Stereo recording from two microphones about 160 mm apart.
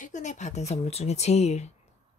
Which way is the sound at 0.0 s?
50° left (ahead or behind).